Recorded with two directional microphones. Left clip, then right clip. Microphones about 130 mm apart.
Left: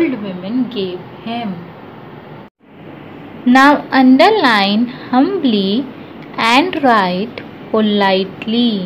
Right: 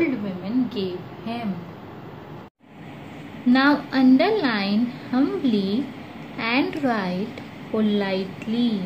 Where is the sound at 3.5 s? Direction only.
20° left (ahead or behind).